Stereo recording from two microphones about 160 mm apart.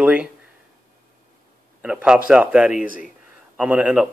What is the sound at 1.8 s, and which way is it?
Speech, 10° right (ahead or behind).